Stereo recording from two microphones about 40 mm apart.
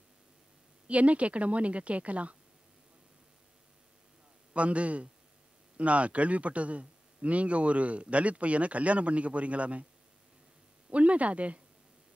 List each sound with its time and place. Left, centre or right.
0.8 s speech: right
4.6 s speech: right
10.9 s speech: right